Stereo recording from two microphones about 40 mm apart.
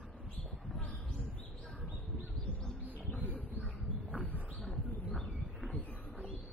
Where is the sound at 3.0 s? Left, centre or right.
Left.